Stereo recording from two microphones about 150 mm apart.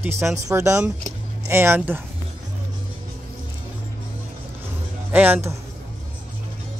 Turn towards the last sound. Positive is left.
turn(degrees=-15)  # may be behind; listen again after turning